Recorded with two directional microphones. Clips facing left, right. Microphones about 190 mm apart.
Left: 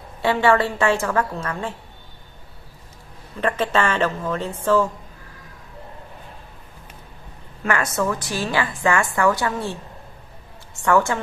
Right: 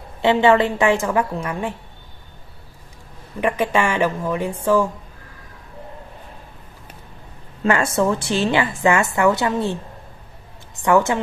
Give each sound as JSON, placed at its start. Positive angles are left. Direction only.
{"t": 0.2, "sound": "a woman's voice", "side_deg": -20}
{"t": 3.3, "sound": "a woman's voice", "side_deg": -15}
{"t": 7.6, "sound": "a woman's voice", "side_deg": -30}
{"t": 10.8, "sound": "a woman's voice", "side_deg": -20}